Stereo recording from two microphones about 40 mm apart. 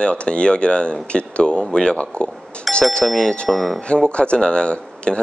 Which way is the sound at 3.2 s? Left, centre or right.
Left.